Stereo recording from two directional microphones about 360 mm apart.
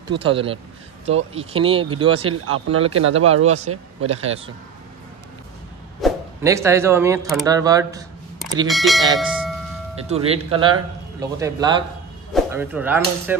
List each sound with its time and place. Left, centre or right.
0.1 s speech: centre
2.4 s speech: right
3.4 s speech: centre
5.9 s speech: centre
10.0 s speech: centre